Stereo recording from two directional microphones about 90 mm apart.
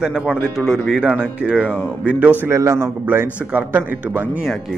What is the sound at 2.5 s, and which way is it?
Speech, 35° right (ahead or behind).